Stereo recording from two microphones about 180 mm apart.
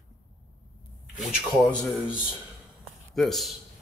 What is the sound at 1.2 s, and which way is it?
Speech, 5° left (ahead or behind).